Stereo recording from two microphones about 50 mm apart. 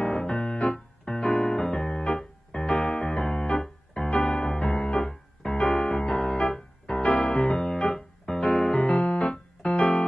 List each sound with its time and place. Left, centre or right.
0.0 s music: centre
8.7 s keyboard: left
9.7 s music: left